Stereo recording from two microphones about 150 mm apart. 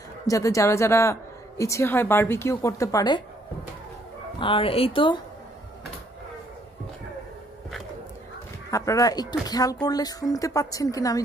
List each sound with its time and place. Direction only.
0.3 s speech: 20° left (ahead or behind)
4.4 s a woman's voice: 35° left (ahead or behind)
8.6 s speech: 20° left (ahead or behind)